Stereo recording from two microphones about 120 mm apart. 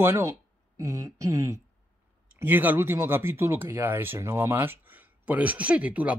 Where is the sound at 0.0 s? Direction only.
25° right (ahead or behind).